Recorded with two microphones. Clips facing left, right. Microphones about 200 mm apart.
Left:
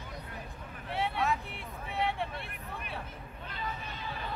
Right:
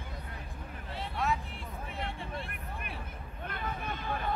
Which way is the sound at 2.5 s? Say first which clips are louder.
Left 1 dB; 55° right (ahead or behind).